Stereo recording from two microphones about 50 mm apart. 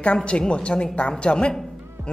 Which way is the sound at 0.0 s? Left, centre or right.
Left.